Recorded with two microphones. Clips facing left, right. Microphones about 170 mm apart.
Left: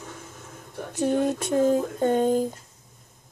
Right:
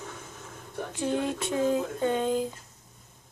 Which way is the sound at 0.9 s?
45° left (ahead or behind).